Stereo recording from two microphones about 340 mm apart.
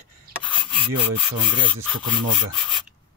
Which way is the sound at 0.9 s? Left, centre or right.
Right.